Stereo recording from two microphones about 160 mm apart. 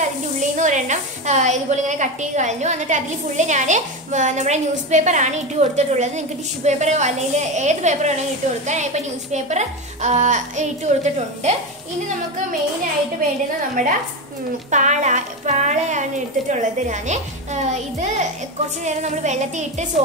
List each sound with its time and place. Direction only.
0.0 s a woman's voice: 50° right (ahead or behind)
13.8 s a woman's voice: 55° right (ahead or behind)